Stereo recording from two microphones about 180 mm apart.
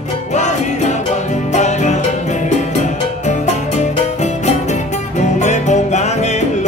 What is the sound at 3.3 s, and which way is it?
Music, 40° left (ahead or behind).